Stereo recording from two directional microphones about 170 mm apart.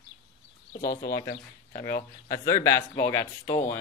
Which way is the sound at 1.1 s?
20° left (ahead or behind).